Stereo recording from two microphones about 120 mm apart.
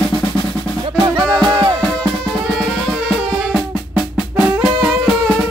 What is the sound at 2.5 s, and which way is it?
Music, centre (ahead or behind).